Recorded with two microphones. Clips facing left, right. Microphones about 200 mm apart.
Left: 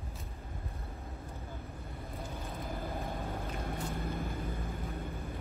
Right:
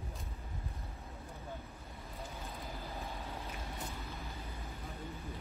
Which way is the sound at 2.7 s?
50° left (ahead or behind).